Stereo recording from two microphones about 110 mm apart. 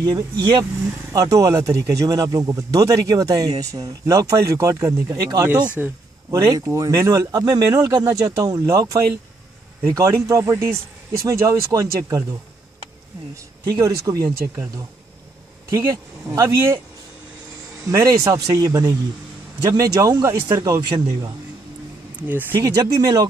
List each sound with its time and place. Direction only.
0.0 s speech: 40° right (ahead or behind)
5.8 s a man's voice: 10° right (ahead or behind)
6.3 s speech: 25° right (ahead or behind)
13.7 s speech: 30° right (ahead or behind)
15.7 s speech: 25° right (ahead or behind)
17.8 s speech: 30° right (ahead or behind)
22.6 s speech: 35° right (ahead or behind)